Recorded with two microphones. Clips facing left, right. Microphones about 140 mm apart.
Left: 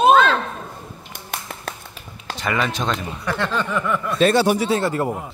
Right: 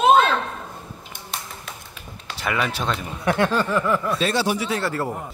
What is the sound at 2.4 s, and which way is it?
Speech, 10° right (ahead or behind).